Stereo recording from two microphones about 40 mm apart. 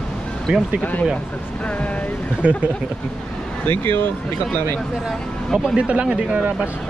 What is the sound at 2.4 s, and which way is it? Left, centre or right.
Speech, right.